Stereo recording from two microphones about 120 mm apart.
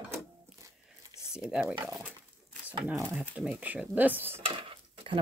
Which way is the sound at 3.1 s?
10° right (ahead or behind).